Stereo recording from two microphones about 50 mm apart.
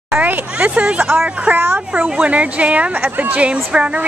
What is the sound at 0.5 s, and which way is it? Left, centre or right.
A woman's voice, right.